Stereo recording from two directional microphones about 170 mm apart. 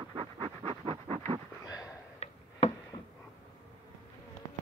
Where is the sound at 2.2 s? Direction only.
40° left (ahead or behind).